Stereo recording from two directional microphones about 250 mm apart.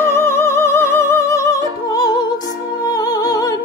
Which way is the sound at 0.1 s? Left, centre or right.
Centre.